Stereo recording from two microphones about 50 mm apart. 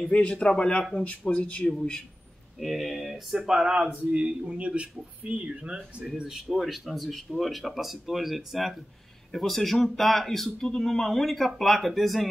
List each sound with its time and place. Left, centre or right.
0.1 s a man's voice: left
2.6 s speech: centre
3.3 s a man's voice: centre
6.4 s speech: centre